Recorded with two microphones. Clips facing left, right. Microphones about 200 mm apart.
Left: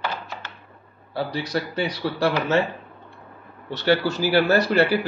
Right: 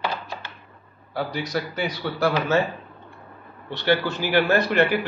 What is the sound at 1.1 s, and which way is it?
A man's voice, 30° left (ahead or behind).